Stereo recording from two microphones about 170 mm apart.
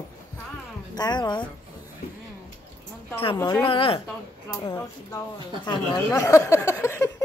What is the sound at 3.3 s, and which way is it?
Speech, 20° left (ahead or behind).